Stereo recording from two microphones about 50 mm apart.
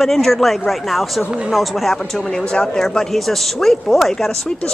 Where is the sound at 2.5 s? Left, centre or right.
Centre.